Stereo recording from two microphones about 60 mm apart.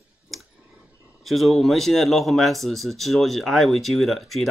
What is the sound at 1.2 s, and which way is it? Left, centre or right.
Speech, centre.